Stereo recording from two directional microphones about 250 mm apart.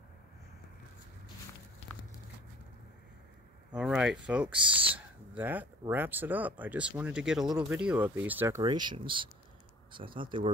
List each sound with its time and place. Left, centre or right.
3.7 s speech: centre; by 10.5 s right